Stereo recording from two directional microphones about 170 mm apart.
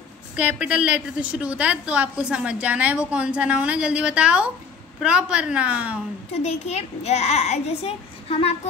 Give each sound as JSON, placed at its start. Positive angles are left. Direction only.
{"t": 0.4, "sound": "a woman's voice", "side_deg": -10}
{"t": 6.4, "sound": "a child's voice", "side_deg": 40}